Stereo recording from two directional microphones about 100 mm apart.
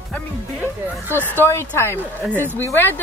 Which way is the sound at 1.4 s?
25° left (ahead or behind).